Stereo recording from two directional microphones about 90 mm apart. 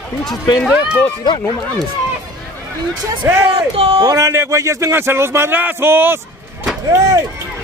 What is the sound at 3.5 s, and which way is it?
Speech, 90° right.